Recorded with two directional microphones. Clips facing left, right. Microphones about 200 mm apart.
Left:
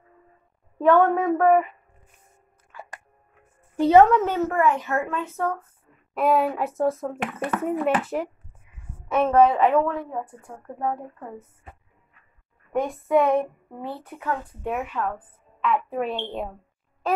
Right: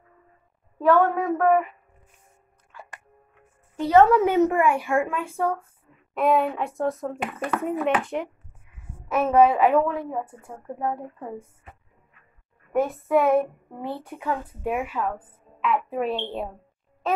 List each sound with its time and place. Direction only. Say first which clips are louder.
0.8 s a woman's voice: left 2 dB; centre (ahead or behind)
2.7 s music: left 3 dB; centre (ahead or behind)
3.7 s a woman's voice: left 3 dB; 15° left (ahead or behind)
4.1 s a woman's voice: right 3 dB; 15° right (ahead or behind)
6.1 s a woman's voice: even; centre (ahead or behind)
12.7 s a woman's voice: even; 5° right (ahead or behind)